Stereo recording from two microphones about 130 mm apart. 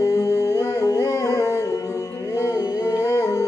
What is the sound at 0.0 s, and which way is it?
Music, 25° left (ahead or behind).